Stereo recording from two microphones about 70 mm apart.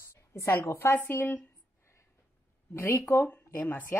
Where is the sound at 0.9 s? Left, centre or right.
Left.